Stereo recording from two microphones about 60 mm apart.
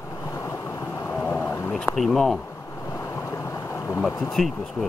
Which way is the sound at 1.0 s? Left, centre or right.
Left.